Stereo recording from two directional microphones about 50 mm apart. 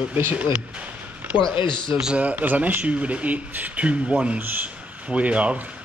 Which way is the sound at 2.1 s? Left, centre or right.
Right.